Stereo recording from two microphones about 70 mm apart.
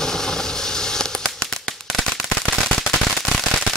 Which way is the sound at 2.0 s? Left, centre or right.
Centre.